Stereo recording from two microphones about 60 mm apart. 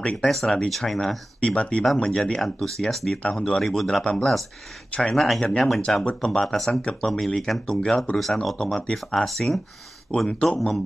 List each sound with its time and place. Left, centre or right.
0.0 s speech: centre
0.3 s speech: centre
1.4 s speech: centre
4.0 s speech: centre
5.1 s speech: centre
6.7 s speech: centre
7.1 s speech: centre